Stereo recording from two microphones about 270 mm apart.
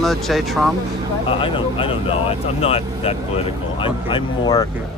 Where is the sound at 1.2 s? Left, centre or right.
Centre.